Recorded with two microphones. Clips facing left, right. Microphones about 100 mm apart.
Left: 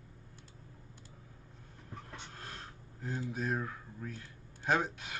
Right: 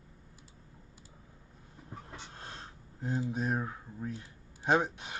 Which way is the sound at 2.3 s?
25° right (ahead or behind).